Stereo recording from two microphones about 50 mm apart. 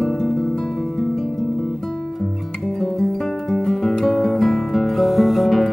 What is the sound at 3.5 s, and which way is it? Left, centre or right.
Music, centre.